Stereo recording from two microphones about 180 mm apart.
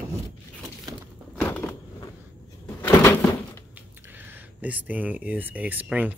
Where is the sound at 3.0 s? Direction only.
15° left (ahead or behind).